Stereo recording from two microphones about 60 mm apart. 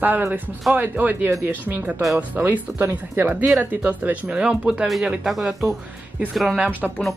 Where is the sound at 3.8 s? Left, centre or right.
Right.